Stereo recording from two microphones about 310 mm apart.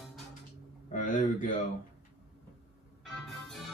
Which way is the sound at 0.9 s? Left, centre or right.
Left.